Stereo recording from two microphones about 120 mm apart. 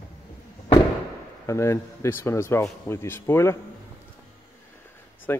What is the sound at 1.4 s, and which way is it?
A man's voice, 25° left (ahead or behind).